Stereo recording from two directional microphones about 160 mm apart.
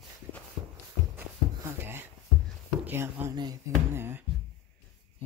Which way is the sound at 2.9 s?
15° right (ahead or behind).